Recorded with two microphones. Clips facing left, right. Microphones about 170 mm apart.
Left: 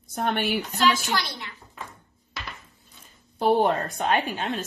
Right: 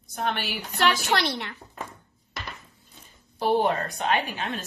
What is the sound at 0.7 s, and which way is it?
Speech, 60° right (ahead or behind).